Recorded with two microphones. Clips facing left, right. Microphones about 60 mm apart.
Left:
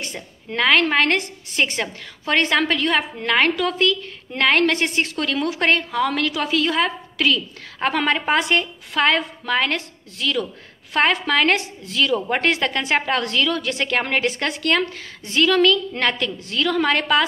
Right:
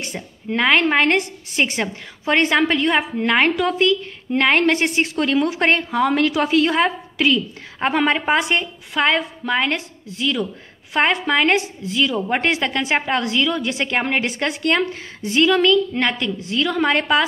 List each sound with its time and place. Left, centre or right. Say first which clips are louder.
0.0 s a woman's voice: right 3 dB; centre